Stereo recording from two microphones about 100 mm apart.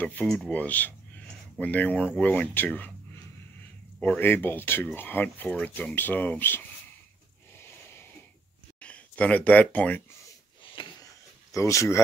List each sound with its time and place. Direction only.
0.0 s speech: 15° left (ahead or behind)
4.0 s speech: 15° left (ahead or behind)
7.5 s a sound: 25° left (ahead or behind)
8.7 s speech: 10° left (ahead or behind)
10.8 s a sound: 55° left (ahead or behind)
11.5 s speech: 30° left (ahead or behind)